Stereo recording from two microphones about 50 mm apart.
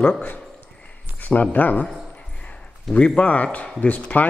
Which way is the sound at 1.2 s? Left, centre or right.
Left.